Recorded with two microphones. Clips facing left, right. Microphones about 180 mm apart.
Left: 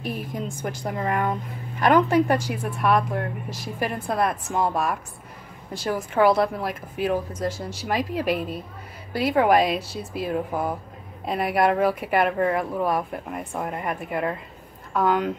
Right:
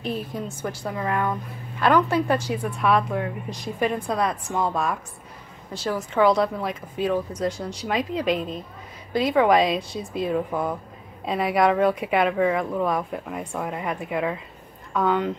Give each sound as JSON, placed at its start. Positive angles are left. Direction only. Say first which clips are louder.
{"t": 0.0, "sound": "a woman's voice", "louder": "right 1 dB", "side_deg": 15}
{"t": 11.5, "sound": "a woman's voice", "louder": "right 1 dB", "side_deg": 5}